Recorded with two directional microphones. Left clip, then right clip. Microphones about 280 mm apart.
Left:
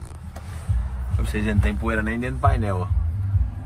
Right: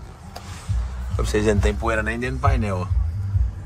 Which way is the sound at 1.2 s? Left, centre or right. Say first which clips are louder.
Right 7 dB; centre.